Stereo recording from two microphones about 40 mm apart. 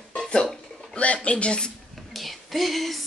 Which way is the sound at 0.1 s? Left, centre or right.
Centre.